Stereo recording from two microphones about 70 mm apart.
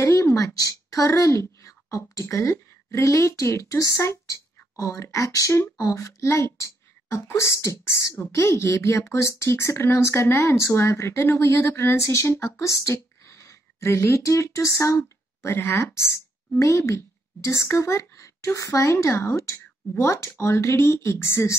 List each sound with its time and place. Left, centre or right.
0.0 s a woman's voice: left
15.4 s speech: left
15.8 s speech: left